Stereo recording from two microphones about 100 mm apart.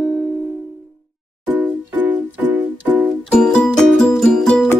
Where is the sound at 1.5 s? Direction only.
15° right (ahead or behind).